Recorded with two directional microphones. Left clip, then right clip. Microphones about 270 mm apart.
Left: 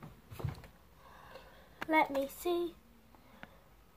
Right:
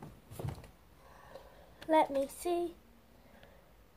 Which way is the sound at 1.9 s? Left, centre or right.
Left.